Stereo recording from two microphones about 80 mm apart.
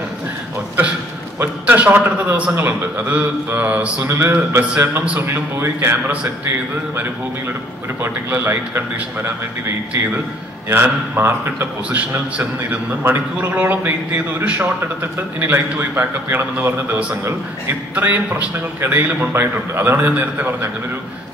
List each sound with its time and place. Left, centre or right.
1.4 s a man's voice: right
4.7 s a man's voice: centre
5.2 s a man's voice: right
8.0 s a man's voice: right
10.7 s a man's voice: right